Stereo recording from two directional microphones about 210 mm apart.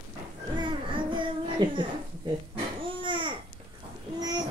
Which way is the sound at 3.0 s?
25° right (ahead or behind).